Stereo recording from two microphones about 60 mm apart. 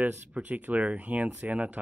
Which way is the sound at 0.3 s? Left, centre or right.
Right.